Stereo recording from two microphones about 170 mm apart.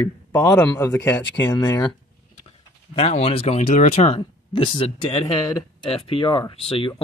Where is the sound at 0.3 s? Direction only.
15° left (ahead or behind).